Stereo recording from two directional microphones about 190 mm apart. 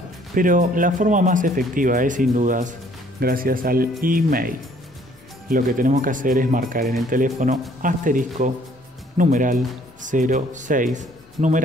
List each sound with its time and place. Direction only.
0.3 s speech: 45° right (ahead or behind)